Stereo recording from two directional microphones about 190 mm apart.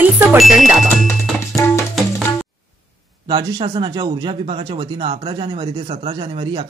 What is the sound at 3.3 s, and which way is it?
Speech, 25° right (ahead or behind).